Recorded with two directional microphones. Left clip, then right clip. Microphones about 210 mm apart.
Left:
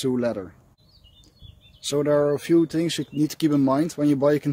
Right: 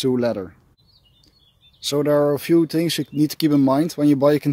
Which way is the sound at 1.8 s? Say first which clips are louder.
Right 3 dB; 30° right (ahead or behind).